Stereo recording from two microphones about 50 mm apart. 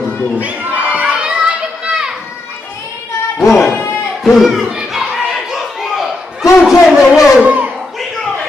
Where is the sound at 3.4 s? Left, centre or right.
Centre.